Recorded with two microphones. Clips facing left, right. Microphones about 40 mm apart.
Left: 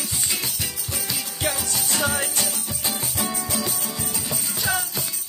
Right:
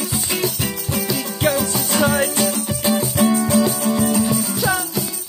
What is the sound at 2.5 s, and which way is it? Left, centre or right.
Music, right.